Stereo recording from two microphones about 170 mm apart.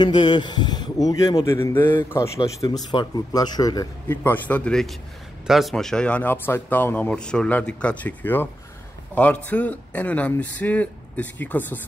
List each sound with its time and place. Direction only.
0.0 s speech: 25° left (ahead or behind)
4.1 s speech: 10° left (ahead or behind)